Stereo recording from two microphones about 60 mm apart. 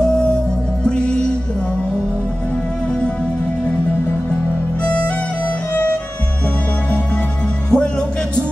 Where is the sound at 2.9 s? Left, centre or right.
Centre.